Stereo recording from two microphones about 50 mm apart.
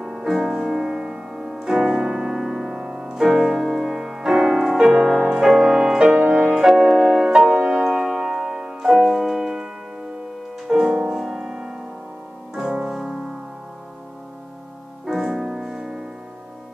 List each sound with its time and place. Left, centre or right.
0.0 s music: centre
3.3 s music: centre
7.3 s music: centre
8.9 s music: centre
10.7 s music: centre
15.0 s music: centre